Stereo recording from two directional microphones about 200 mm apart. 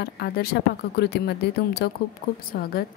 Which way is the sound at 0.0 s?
50° left (ahead or behind).